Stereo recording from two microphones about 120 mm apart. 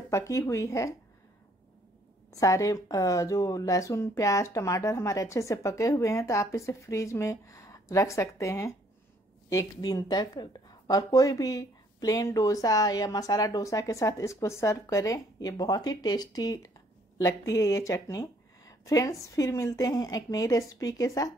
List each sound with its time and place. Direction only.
0.1 s speech: 25° left (ahead or behind)
2.3 s a woman's voice: 30° left (ahead or behind)